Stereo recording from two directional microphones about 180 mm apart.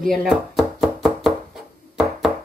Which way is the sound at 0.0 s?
Centre (ahead or behind).